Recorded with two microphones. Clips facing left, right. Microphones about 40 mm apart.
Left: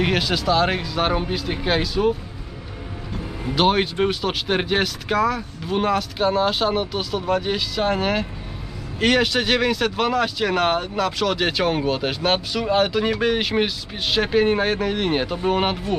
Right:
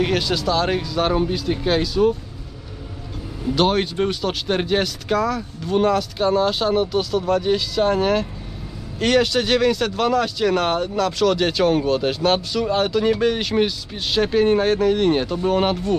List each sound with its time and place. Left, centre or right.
0.0 s speech: centre
3.5 s speech: centre